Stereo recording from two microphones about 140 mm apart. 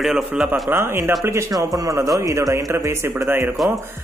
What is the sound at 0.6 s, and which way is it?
A man's voice, 15° right (ahead or behind).